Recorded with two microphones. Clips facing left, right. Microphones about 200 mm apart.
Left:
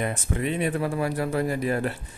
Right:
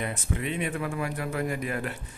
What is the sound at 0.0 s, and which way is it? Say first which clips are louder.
A man's voice: left 4 dB; 45° left (ahead or behind).